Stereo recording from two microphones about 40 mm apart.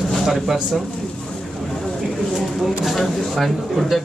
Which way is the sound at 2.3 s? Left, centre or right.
Centre.